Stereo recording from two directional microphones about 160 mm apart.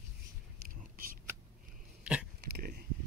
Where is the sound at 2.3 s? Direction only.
75° right (ahead or behind).